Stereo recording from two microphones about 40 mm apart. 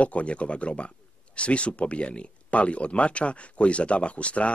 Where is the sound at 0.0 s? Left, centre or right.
Left.